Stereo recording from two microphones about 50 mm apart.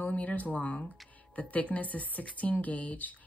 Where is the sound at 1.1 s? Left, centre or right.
Left.